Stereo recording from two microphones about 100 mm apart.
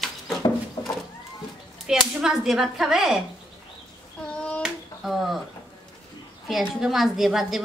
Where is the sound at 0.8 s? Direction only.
45° left (ahead or behind).